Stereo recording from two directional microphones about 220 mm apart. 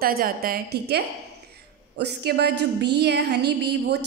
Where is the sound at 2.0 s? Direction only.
50° right (ahead or behind).